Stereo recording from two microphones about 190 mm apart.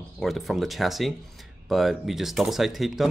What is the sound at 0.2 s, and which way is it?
Speech, centre (ahead or behind).